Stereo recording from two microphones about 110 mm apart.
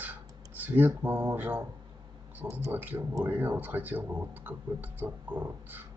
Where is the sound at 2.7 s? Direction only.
20° right (ahead or behind).